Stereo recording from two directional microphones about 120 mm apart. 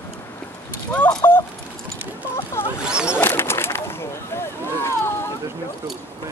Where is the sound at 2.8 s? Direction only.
5° right (ahead or behind).